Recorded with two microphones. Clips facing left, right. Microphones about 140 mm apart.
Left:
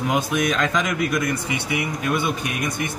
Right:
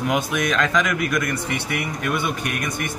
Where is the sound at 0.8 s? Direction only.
25° left (ahead or behind).